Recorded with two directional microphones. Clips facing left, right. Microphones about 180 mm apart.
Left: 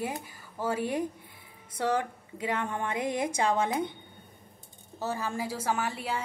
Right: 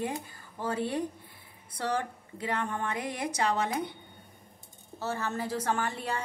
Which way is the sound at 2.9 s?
20° left (ahead or behind).